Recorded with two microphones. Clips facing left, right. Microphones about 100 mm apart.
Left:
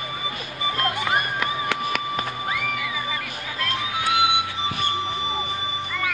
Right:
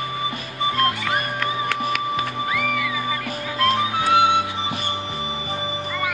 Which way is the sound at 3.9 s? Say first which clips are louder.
Right 5 dB; 35° right (ahead or behind).